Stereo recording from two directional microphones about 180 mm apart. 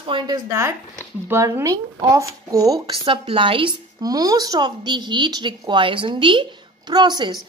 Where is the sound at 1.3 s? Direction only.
15° right (ahead or behind).